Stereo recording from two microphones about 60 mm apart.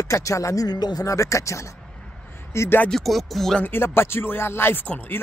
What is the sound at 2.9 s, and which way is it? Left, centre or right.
Speech, centre.